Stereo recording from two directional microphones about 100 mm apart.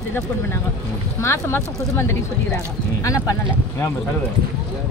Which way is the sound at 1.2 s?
25° left (ahead or behind).